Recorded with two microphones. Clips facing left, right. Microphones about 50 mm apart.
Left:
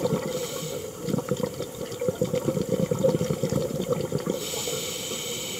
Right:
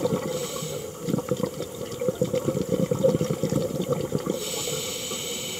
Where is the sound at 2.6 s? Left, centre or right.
Centre.